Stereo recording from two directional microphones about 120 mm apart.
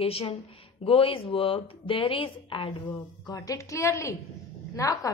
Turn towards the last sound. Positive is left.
turn(degrees=30)  # may be behind; listen again after turning